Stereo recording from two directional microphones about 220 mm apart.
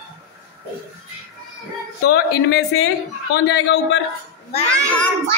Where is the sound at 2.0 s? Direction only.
45° left (ahead or behind).